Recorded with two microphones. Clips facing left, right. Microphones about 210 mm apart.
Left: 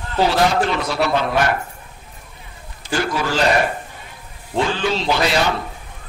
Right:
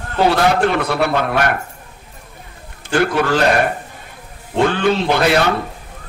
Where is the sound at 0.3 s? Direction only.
60° right (ahead or behind).